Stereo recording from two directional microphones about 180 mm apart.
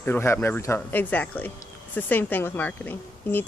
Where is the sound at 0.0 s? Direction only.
10° left (ahead or behind).